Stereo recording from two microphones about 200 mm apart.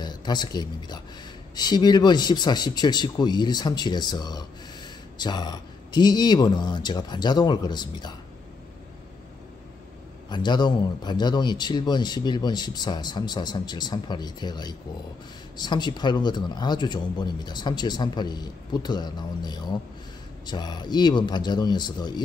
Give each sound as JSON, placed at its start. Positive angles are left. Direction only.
{"t": 0.0, "sound": "speech", "side_deg": 20}
{"t": 10.3, "sound": "speech", "side_deg": 20}